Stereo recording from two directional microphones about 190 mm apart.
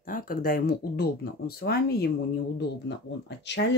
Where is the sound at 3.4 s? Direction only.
65° left (ahead or behind).